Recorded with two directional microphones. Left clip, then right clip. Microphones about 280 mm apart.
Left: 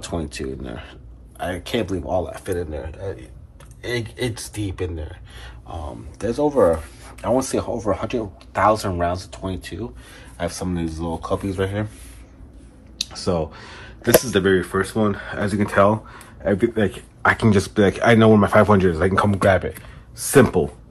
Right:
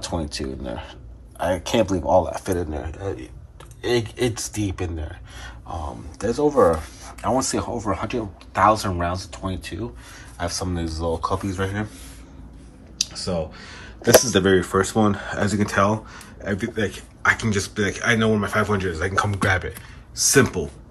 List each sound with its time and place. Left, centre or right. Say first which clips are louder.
0.0 s speech: even; centre
12.9 s speech: left 2 dB; centre
14.0 s speech: right 1 dB; centre